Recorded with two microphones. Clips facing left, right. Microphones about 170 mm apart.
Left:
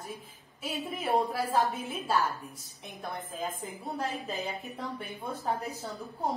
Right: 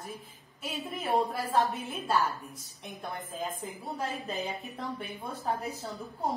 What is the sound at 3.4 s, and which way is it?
A woman's voice, centre (ahead or behind).